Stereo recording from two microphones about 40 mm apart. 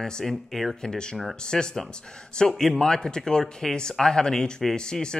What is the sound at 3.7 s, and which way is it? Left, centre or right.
Speech, centre.